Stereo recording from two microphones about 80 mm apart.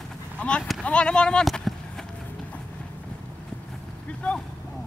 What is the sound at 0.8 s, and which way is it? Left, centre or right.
Horse, centre.